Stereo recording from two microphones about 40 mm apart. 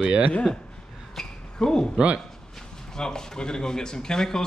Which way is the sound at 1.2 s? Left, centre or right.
Centre.